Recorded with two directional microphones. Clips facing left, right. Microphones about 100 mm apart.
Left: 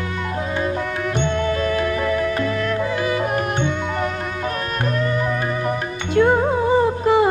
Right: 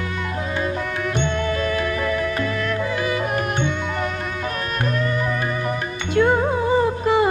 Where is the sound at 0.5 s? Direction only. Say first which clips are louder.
Left 1 dB; 35° left (ahead or behind).